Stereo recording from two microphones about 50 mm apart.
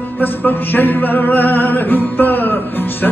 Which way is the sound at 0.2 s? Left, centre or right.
Left.